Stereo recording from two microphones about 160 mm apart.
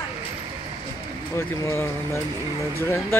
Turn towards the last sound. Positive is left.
turn(degrees=15)  # may be behind; listen again after turning